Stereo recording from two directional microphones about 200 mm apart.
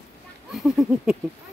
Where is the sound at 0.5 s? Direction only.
Centre (ahead or behind).